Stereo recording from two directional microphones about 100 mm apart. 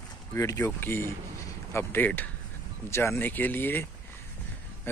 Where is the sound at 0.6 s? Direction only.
20° left (ahead or behind).